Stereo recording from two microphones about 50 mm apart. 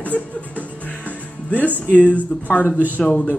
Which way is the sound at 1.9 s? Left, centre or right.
Left.